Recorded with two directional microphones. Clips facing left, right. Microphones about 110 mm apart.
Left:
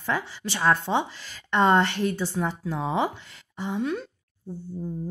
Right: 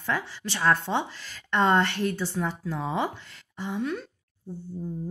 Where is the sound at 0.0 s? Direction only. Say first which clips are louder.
Left 1 dB; 15° left (ahead or behind).